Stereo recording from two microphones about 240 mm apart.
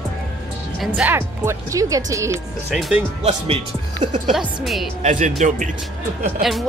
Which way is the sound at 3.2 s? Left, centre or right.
Right.